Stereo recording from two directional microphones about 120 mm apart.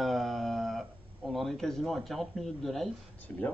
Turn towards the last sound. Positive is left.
turn(degrees=15)  # may be behind; listen again after turning